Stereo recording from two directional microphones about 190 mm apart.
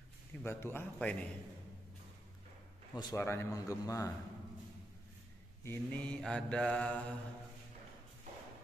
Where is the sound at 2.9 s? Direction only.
20° left (ahead or behind).